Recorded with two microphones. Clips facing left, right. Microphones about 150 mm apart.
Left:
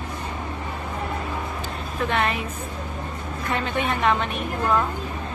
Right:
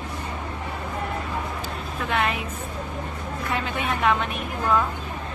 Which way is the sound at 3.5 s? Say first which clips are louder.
Left 3 dB; 5° right (ahead or behind).